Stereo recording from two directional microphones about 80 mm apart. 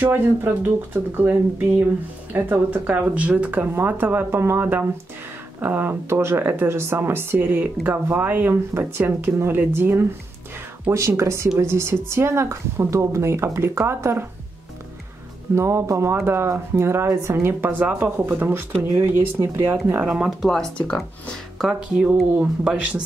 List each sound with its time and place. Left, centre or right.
0.0 s speech: right
15.5 s speech: right
19.9 s speech: centre
20.2 s speech: centre
22.3 s speech: centre